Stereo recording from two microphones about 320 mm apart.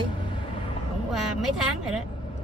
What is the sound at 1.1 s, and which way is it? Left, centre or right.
Speech, centre.